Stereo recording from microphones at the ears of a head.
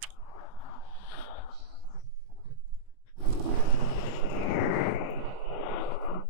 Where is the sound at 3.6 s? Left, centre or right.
Left.